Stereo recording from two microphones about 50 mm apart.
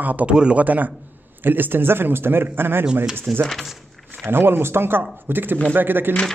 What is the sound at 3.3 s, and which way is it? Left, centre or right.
Speech, centre.